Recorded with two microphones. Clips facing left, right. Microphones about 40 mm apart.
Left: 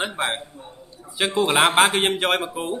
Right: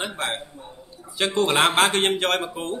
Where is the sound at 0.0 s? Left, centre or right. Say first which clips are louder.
Left 3 dB; centre.